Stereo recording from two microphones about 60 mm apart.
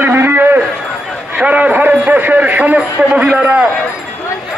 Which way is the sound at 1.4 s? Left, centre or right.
Right.